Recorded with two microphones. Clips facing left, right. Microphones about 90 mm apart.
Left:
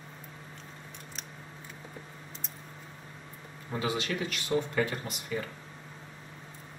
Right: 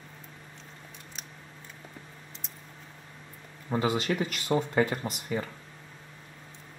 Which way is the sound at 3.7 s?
40° right (ahead or behind).